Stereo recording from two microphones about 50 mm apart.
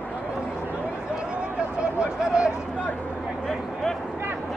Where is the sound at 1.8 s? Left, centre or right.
Centre.